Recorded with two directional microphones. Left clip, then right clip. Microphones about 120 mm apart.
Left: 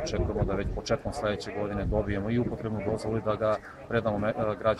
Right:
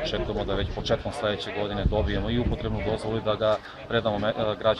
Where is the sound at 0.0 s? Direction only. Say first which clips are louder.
Right 2 dB; 20° left (ahead or behind).